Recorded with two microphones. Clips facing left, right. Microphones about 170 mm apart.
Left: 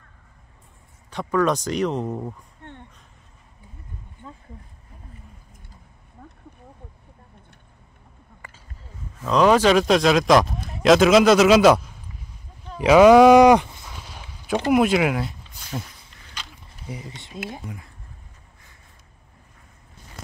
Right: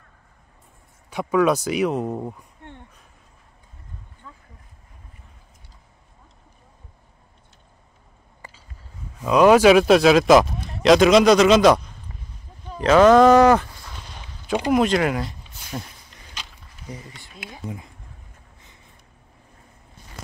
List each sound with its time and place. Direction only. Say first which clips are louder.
1.1 s speech: right 2 dB; 10° right (ahead or behind)
4.2 s a sound: left 5 dB; 25° left (ahead or behind)
9.2 s speech: right 3 dB; 10° right (ahead or behind); by 13.8 s 15° left (ahead or behind)
13.8 s a sound: even; 5° left (ahead or behind)
14.7 s speech: left 1 dB; 5° left (ahead or behind)
16.8 s speech: left 2 dB; 10° left (ahead or behind)
17.1 s speech: left 5 dB; 20° left (ahead or behind)
17.6 s speech: right 4 dB; 20° right (ahead or behind)